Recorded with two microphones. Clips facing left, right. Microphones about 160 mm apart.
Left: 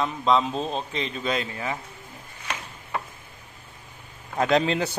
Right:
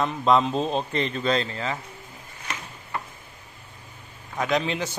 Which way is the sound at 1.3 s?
15° left (ahead or behind).